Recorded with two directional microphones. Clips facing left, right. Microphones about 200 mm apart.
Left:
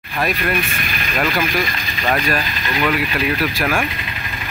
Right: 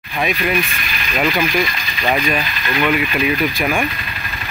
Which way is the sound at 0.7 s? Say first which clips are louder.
Left 2 dB; 50° left (ahead or behind).